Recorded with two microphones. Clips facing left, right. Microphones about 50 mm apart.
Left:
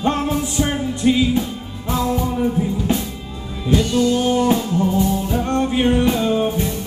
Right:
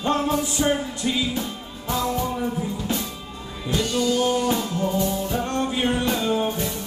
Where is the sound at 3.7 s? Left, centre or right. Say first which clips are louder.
Left 6 dB; centre.